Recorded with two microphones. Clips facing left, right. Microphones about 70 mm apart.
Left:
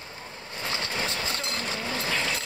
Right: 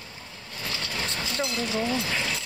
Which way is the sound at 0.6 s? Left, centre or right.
Left.